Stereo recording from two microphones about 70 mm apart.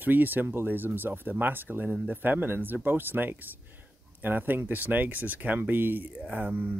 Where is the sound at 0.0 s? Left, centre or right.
Right.